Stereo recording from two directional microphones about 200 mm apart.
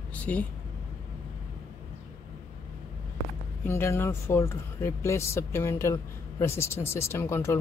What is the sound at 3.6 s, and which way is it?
Speech, 10° left (ahead or behind).